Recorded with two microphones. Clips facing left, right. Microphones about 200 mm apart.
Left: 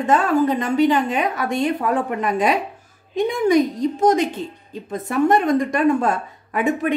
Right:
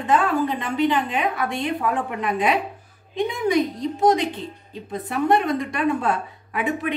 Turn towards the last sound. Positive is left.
turn(degrees=45)  # may be behind; listen again after turning